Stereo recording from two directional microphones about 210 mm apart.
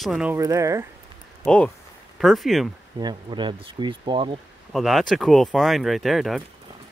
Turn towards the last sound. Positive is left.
turn(degrees=0)  # may be behind; listen again after turning